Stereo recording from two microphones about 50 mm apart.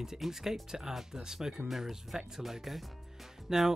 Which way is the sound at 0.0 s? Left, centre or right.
Centre.